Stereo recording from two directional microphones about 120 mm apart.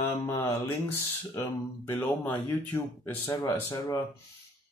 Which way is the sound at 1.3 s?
20° left (ahead or behind).